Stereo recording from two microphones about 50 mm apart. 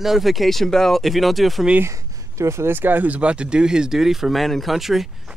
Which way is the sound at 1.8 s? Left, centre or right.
Right.